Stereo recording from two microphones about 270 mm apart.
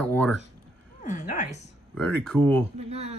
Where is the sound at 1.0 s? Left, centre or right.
Left.